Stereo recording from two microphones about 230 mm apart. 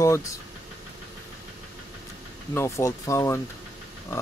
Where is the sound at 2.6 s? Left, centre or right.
Centre.